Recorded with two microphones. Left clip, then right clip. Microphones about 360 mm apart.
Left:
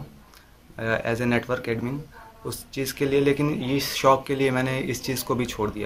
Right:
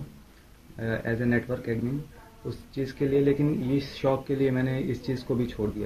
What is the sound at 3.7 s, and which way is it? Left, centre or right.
Speech, centre.